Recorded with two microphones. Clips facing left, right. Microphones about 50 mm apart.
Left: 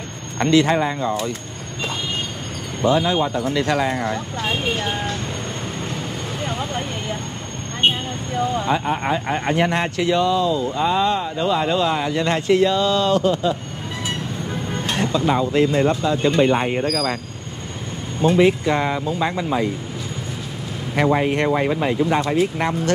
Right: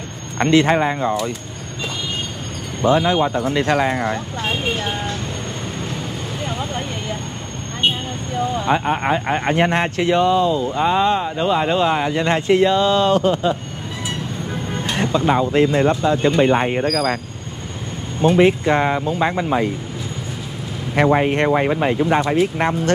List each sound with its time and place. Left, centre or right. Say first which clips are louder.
0.4 s speech: right 2 dB; right
2.8 s speech: right 2 dB; right
4.5 s speech: right 1 dB; centre
6.4 s vehicle: even; centre
7.8 s speech: left 1 dB; left
8.6 s speech: right 2 dB; right
15.0 s speech: right 2 dB; right
18.2 s speech: right 2 dB; right
20.9 s speech: right 2 dB; right